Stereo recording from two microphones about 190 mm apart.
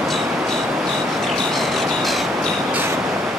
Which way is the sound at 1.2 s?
Centre (ahead or behind).